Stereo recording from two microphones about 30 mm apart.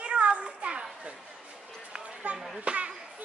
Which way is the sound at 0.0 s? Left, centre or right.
Right.